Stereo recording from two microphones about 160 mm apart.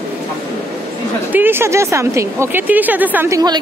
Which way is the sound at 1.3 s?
15° right (ahead or behind).